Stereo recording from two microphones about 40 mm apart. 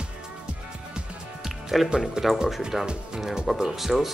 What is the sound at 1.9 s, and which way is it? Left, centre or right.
Speech, centre.